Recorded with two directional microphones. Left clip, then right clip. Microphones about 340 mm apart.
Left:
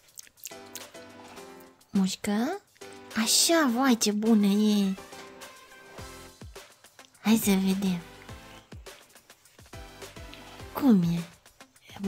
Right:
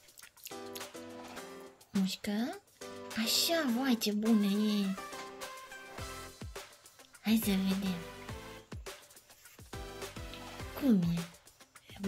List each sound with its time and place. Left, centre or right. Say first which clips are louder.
2.0 s speech: left 8 dB; left
6.0 s music: even; centre
7.2 s speech: left 7 dB; left
10.9 s speech: left 7 dB; left